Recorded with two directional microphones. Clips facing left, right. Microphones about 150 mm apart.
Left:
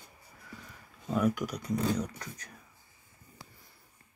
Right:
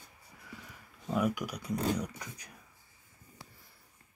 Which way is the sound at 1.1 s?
5° right (ahead or behind).